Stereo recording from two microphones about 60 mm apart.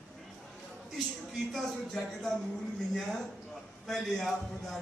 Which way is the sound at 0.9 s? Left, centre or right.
Centre.